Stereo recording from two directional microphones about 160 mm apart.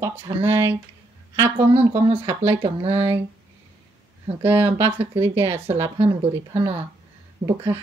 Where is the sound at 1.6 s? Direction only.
35° right (ahead or behind).